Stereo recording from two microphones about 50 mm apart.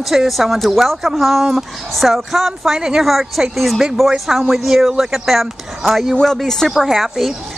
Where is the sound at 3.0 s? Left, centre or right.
Centre.